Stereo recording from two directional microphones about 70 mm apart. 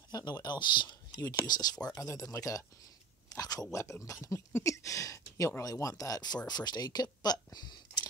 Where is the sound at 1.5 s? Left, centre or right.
Left.